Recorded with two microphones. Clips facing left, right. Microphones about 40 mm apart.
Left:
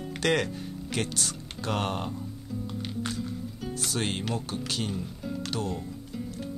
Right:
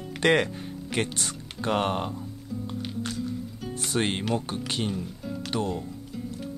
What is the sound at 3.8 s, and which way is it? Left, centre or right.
Speech, right.